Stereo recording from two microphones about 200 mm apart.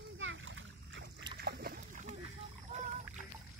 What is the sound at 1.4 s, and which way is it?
Boat, 45° right (ahead or behind).